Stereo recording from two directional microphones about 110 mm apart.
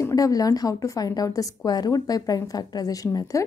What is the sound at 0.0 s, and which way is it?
A woman's voice, 35° left (ahead or behind).